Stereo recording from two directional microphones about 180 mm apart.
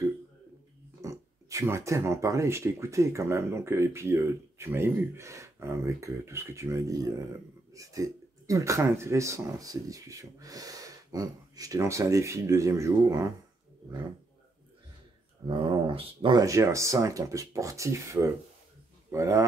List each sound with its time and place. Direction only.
1.0 s speech: 15° right (ahead or behind)
15.4 s speech: 30° right (ahead or behind)